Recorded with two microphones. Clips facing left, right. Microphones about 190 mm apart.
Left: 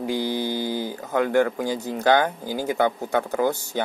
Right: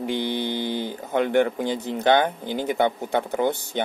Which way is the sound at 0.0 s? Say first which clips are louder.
Left 1 dB; 20° right (ahead or behind).